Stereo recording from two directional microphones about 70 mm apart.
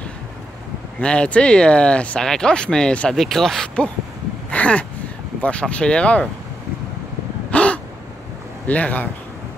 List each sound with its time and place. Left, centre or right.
0.9 s speech: centre
4.5 s a sound: centre
5.4 s speech: centre
7.5 s caw: centre
8.6 s a man's voice: left